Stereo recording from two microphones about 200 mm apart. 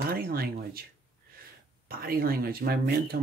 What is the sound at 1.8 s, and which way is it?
Speech, 45° right (ahead or behind).